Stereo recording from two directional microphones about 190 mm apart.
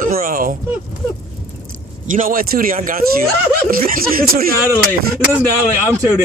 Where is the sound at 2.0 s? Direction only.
45° right (ahead or behind).